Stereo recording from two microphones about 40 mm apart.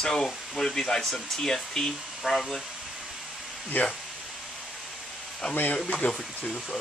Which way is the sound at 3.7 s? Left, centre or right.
Left.